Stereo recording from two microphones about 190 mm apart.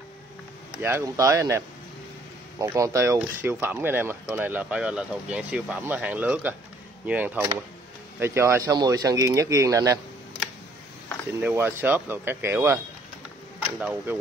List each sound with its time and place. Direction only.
0.7 s speech: 10° right (ahead or behind)
2.6 s speech: 15° right (ahead or behind)
11.4 s speech: 10° right (ahead or behind)